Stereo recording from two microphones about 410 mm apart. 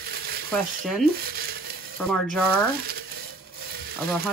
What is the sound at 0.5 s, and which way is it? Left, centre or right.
Speech, centre.